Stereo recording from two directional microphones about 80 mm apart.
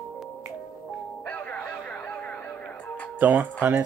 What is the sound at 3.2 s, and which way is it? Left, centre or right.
Speech, right.